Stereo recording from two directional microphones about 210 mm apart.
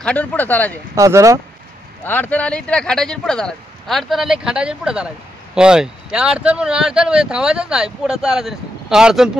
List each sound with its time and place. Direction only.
0.0 s speech: 5° left (ahead or behind)
0.9 s speech: 15° right (ahead or behind)
2.0 s speech: 10° left (ahead or behind)